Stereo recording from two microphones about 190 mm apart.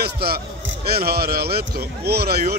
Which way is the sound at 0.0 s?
55° right (ahead or behind).